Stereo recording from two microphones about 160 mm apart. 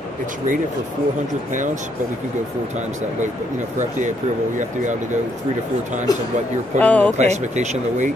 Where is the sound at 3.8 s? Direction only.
50° right (ahead or behind).